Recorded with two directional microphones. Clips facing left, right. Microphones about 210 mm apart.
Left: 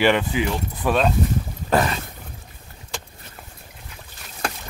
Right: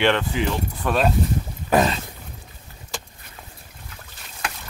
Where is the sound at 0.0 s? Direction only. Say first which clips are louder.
Left 1 dB; 5° left (ahead or behind).